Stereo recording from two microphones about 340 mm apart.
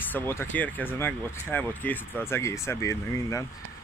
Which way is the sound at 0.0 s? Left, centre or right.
Centre.